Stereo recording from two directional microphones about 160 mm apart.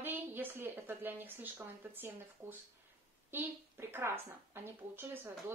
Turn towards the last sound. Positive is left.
turn(degrees=-15)  # may be behind; listen again after turning